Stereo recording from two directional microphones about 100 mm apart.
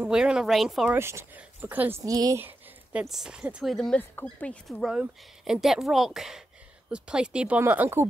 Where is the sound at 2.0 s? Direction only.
40° right (ahead or behind).